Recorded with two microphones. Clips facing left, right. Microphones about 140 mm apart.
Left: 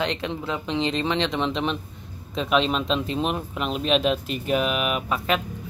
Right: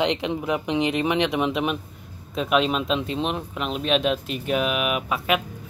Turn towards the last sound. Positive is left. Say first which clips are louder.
# right 1 dB
turn(degrees=-5)  # may be behind; listen again after turning